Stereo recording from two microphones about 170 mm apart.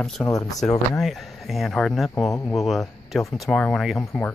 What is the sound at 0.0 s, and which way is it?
Speech, 5° left (ahead or behind).